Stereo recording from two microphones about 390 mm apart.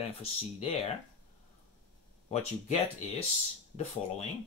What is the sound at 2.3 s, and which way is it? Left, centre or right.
Speech, centre.